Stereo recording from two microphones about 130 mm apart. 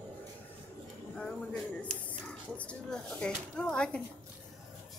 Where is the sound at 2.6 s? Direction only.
5° left (ahead or behind).